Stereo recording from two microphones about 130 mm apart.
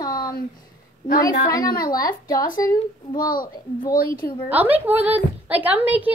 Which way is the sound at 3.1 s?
90° left.